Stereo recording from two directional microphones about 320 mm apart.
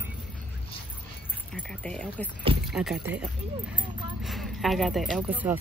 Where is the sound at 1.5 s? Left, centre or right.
Centre.